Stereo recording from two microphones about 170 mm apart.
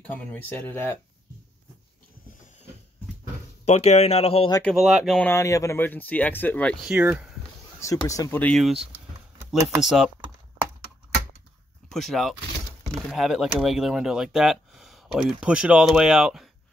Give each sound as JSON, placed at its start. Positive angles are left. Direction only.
{"t": 0.0, "sound": "speech", "side_deg": 10}
{"t": 3.6, "sound": "speech", "side_deg": 40}
{"t": 4.6, "sound": "speech", "side_deg": 0}
{"t": 5.3, "sound": "speech", "side_deg": 15}
{"t": 6.8, "sound": "speech", "side_deg": -5}
{"t": 7.8, "sound": "speech", "side_deg": 20}
{"t": 11.9, "sound": "speech", "side_deg": 0}